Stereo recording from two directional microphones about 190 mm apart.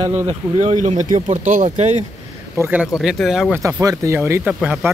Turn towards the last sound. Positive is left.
turn(degrees=-5)  # may be behind; listen again after turning